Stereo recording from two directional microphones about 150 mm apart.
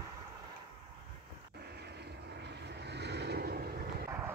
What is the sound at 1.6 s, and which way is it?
Vehicle, 90° right.